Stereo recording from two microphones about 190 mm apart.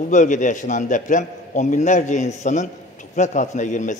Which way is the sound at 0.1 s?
40° left (ahead or behind).